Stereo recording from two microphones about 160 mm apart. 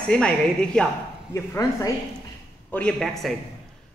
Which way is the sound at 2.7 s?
5° left (ahead or behind).